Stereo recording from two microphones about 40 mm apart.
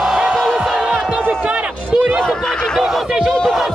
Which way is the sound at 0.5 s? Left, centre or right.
Centre.